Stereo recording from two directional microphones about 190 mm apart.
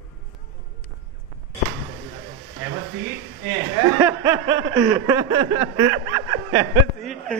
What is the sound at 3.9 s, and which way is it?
Snicker, 15° right (ahead or behind).